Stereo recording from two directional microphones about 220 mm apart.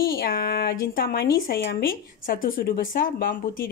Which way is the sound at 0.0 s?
40° left (ahead or behind).